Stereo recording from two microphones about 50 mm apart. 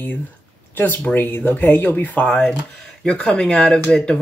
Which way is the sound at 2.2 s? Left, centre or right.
Centre.